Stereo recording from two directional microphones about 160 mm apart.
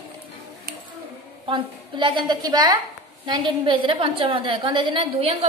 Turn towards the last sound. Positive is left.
turn(degrees=-35)  # may be behind; listen again after turning